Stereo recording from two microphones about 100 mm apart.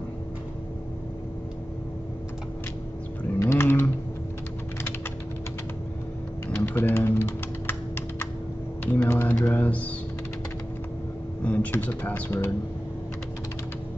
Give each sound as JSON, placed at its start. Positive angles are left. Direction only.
{"t": 3.3, "sound": "typing", "side_deg": 25}
{"t": 6.6, "sound": "typing", "side_deg": 25}
{"t": 11.4, "sound": "speech", "side_deg": 15}